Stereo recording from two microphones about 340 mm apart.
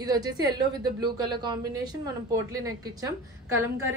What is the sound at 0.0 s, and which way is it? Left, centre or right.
A woman's voice, centre.